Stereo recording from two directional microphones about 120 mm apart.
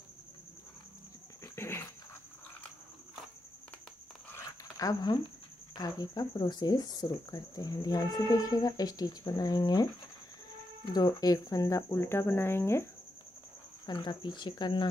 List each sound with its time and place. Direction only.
1.4 s dog: 20° left (ahead or behind)
4.7 s speech: 30° left (ahead or behind)
10.9 s speech: 35° left (ahead or behind)
13.8 s speech: 40° left (ahead or behind)